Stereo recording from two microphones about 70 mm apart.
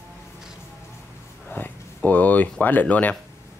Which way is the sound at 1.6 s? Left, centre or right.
Left.